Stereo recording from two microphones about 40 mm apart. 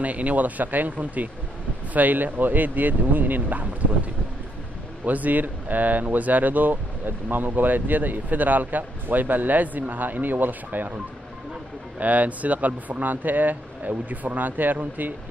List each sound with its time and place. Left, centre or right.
0.0 s speech: right
5.0 s speech: right
12.0 s speech: right